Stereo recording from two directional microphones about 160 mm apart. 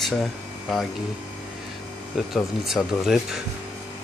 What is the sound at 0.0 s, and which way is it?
Speech, centre (ahead or behind).